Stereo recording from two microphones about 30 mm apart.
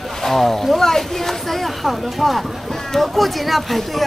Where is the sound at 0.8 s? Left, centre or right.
Centre.